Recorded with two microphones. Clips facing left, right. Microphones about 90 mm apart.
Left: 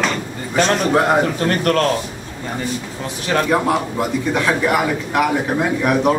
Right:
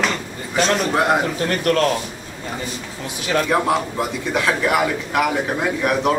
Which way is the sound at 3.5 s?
Centre (ahead or behind).